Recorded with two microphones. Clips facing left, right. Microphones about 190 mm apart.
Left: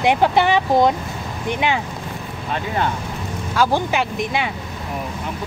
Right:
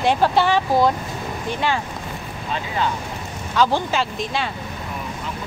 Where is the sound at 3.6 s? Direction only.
15° left (ahead or behind).